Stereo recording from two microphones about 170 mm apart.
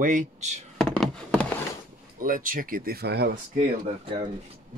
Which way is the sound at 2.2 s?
55° right (ahead or behind).